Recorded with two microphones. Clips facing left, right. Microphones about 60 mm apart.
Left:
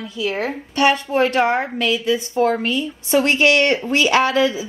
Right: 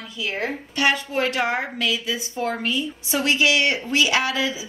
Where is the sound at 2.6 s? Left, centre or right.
Left.